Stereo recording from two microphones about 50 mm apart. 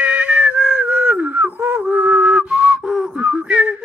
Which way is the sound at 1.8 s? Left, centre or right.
Right.